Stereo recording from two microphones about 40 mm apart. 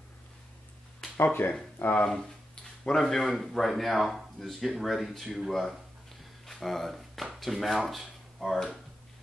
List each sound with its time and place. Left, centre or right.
1.2 s speech: left
2.9 s speech: centre
6.4 s a sound: centre
7.3 s speech: centre